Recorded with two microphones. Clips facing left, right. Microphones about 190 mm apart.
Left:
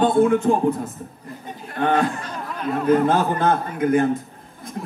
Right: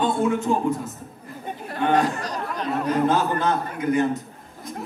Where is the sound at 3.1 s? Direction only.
50° left (ahead or behind).